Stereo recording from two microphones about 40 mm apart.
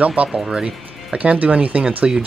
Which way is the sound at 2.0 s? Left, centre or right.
Centre.